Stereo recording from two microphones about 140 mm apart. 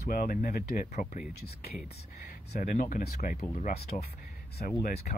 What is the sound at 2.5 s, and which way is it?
Speech, 70° left (ahead or behind).